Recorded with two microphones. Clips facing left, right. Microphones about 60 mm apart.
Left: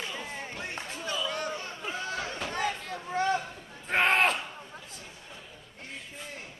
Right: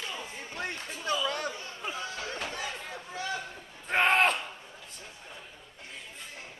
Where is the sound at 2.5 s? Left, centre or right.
Left.